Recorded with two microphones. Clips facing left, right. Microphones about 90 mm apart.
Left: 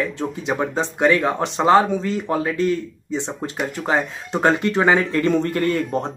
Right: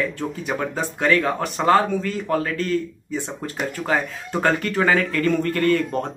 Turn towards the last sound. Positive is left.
turn(degrees=20)  # may be behind; listen again after turning